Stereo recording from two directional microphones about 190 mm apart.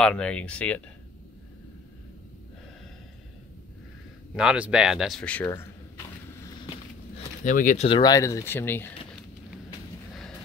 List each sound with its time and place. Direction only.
0.0 s speech: 5° left (ahead or behind)
4.4 s speech: 5° right (ahead or behind); by 5.7 s 15° left (ahead or behind)
7.4 s speech: 40° left (ahead or behind)
7.9 s speech: 20° left (ahead or behind)